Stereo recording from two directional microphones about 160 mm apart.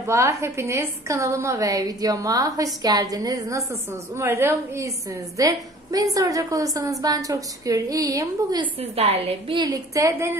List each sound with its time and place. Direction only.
0.0 s a woman's voice: 20° right (ahead or behind)
8.9 s a woman's voice: 40° right (ahead or behind)
9.6 s a woman's voice: 20° right (ahead or behind)